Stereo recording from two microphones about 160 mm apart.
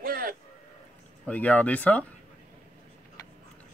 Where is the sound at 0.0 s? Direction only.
65° right (ahead or behind).